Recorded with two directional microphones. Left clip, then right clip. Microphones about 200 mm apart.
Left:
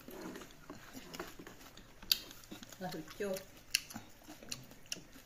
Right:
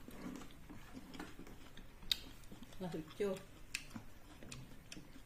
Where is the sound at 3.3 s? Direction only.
15° right (ahead or behind).